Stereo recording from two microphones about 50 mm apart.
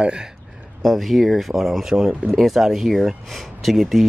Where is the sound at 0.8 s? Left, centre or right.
Centre.